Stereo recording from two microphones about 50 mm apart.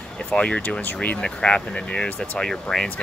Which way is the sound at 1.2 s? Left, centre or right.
Centre.